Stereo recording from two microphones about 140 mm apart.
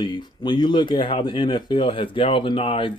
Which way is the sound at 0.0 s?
35° left (ahead or behind).